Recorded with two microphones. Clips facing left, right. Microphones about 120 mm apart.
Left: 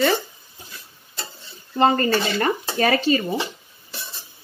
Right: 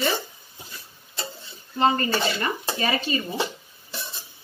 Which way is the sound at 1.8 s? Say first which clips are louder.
Left 3 dB; 50° left (ahead or behind).